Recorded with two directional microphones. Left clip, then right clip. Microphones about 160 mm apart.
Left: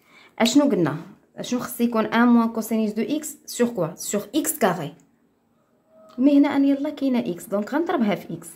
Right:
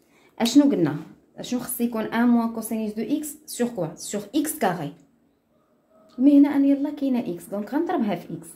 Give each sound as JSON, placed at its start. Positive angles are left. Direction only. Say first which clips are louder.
{"t": 0.4, "sound": "speech", "louder": "even", "side_deg": 25}
{"t": 6.0, "sound": "speech", "louder": "right 1 dB", "side_deg": 35}